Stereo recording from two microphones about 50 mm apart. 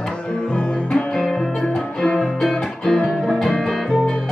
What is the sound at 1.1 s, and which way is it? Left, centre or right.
Music, centre.